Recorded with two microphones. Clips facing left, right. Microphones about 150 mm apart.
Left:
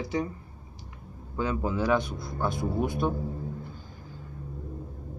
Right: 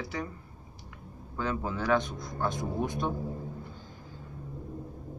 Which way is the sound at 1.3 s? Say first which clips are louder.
Left 4 dB; 15° left (ahead or behind).